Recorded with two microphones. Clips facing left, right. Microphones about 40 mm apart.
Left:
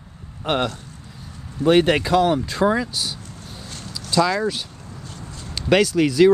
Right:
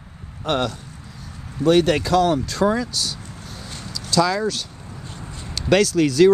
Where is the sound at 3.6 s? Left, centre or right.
Centre.